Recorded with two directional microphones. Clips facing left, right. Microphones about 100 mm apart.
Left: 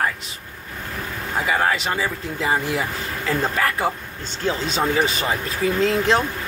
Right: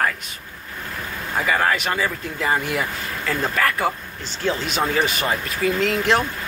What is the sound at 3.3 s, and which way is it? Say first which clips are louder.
Speech: even; 25° left (ahead or behind).